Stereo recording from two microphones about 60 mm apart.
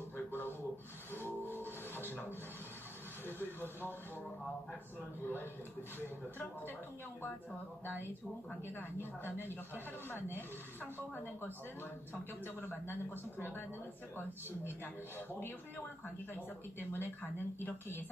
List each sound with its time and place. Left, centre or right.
0.3 s a sound: left
2.0 s rub: left
3.3 s speech: left
5.2 s speech: left
8.6 s speech: left
16.9 s speech: left